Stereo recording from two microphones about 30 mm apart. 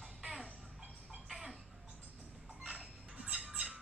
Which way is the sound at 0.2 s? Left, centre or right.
Centre.